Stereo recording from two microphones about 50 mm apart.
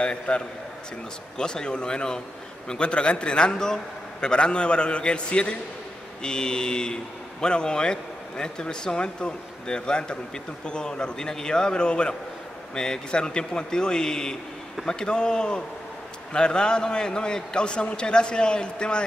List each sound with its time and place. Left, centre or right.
0.0 s a man's voice: left
1.4 s a man's voice: centre